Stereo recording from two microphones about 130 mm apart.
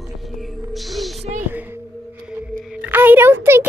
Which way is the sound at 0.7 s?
Centre (ahead or behind).